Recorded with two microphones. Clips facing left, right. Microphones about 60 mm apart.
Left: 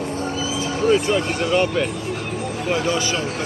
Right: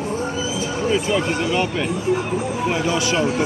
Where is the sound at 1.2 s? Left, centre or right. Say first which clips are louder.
Even; centre.